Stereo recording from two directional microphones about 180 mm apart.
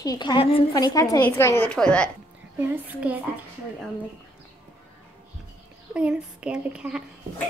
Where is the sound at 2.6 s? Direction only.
10° right (ahead or behind).